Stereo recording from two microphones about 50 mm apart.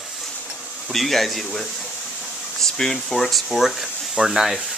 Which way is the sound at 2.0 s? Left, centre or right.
Centre.